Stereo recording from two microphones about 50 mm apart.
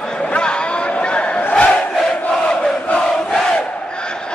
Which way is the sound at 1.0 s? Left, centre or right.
Left.